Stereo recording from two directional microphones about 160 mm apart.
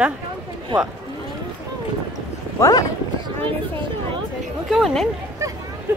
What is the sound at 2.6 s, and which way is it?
Speech, 20° left (ahead or behind).